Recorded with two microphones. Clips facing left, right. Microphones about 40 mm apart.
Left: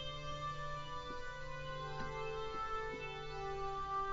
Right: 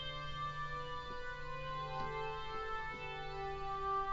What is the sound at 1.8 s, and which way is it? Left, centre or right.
Music, centre.